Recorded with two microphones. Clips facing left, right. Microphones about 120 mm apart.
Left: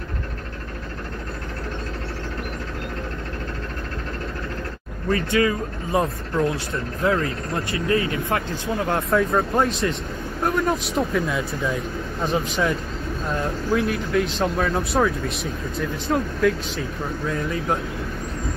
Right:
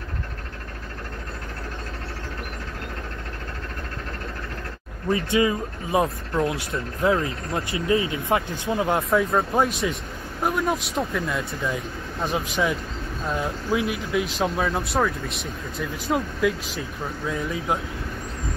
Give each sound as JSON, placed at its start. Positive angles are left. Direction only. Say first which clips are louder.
{"t": 5.1, "sound": "speech", "louder": "left 1 dB", "side_deg": -20}
{"t": 9.1, "sound": "speech", "louder": "left 3 dB", "side_deg": 0}